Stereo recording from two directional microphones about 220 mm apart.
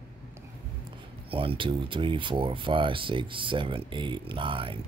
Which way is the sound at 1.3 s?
25° right (ahead or behind).